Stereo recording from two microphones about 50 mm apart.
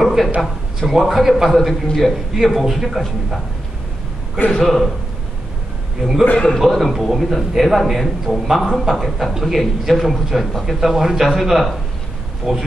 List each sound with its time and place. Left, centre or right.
0.0 s a sound: centre
0.4 s a man's voice: centre
4.6 s a man's voice: centre
6.3 s a man's voice: centre
6.6 s a man's voice: centre